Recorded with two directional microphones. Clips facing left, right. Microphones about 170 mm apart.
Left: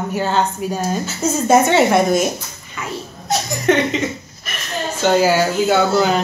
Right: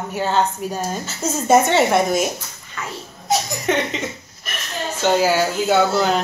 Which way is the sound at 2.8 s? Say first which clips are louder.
Left 2 dB; 10° left (ahead or behind).